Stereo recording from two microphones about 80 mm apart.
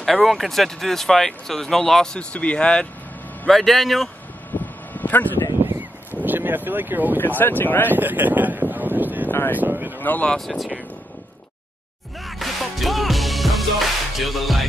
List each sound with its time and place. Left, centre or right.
0.0 s speech: centre
4.5 s vehicle: left
5.7 s a sound: right
7.2 s speech: left
7.9 s a sound: right
9.3 s speech: left
9.6 s a sound: right
9.9 s speech: left
10.2 s speech: centre
12.3 s music: centre